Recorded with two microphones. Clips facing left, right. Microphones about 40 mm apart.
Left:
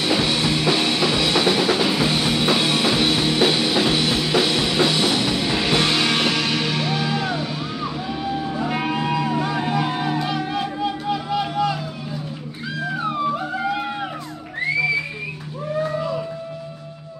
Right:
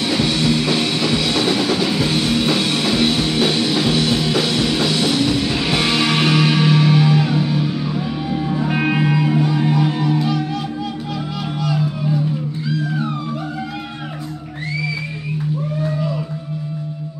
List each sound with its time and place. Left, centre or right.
0.0 s music: centre
9.4 s music: centre
12.6 s a sound: centre